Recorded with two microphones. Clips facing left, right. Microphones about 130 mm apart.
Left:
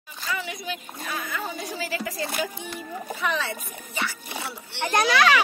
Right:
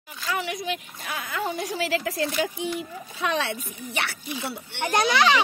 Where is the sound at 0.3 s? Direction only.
75° right (ahead or behind).